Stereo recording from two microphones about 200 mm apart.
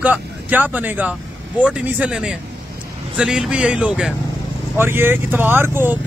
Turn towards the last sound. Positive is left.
turn(degrees=-10)  # may be behind; listen again after turning